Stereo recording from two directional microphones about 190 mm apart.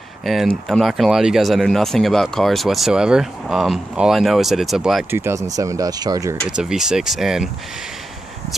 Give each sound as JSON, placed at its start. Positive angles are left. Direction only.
{"t": 0.2, "sound": "speech", "side_deg": 0}
{"t": 5.1, "sound": "speech", "side_deg": -15}
{"t": 6.5, "sound": "speech", "side_deg": -5}